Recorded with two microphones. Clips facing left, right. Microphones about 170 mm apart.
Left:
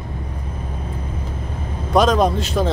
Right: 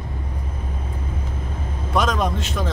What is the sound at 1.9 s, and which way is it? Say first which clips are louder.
Speech: left 6 dB; 35° left (ahead or behind).